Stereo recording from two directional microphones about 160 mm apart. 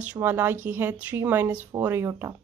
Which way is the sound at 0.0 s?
10° right (ahead or behind).